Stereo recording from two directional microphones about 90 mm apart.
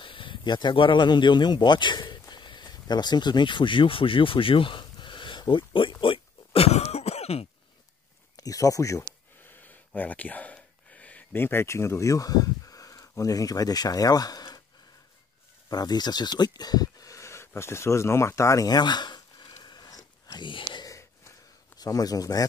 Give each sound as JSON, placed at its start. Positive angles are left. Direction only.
{"t": 0.0, "sound": "speech", "side_deg": 70}
{"t": 8.4, "sound": "speech", "side_deg": 40}
{"t": 9.4, "sound": "a sound", "side_deg": 20}
{"t": 15.7, "sound": "speech", "side_deg": 50}
{"t": 18.8, "sound": "a sound", "side_deg": 55}
{"t": 20.4, "sound": "speech", "side_deg": 65}
{"t": 21.7, "sound": "speech", "side_deg": 45}